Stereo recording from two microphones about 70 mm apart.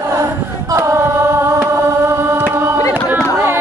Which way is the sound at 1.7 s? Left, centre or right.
Right.